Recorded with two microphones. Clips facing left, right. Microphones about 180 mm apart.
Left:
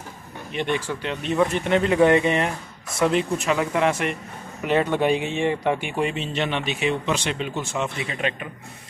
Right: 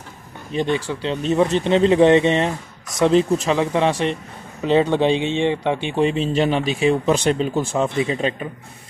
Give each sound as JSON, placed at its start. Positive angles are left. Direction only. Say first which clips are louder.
{"t": 0.5, "sound": "speech", "louder": "right 4 dB", "side_deg": -35}